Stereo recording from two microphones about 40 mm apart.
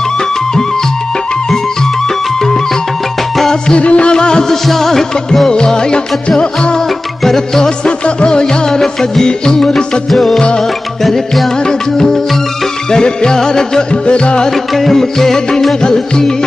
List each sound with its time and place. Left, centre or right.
3.3 s music: centre
3.7 s music: left
4.6 s music: centre
5.5 s music: centre
7.2 s music: centre
7.8 s music: left
12.9 s music: centre
14.8 s music: centre